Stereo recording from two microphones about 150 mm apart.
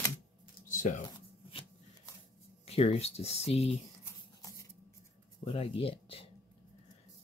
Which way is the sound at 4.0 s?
20° left (ahead or behind).